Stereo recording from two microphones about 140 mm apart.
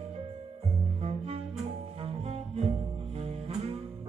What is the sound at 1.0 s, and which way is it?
Music, 45° right (ahead or behind).